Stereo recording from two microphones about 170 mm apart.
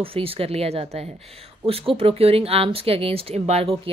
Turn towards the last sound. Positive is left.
turn(degrees=-35)  # may be behind; listen again after turning